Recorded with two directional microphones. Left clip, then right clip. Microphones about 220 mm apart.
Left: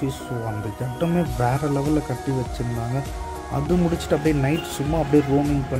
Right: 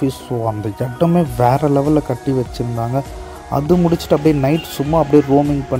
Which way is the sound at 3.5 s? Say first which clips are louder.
Right 8 dB; 25° right (ahead or behind).